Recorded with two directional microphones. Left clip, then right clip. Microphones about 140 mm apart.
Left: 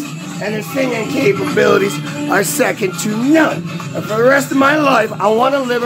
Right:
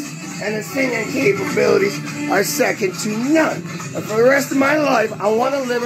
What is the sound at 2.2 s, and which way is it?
Speech, 5° right (ahead or behind).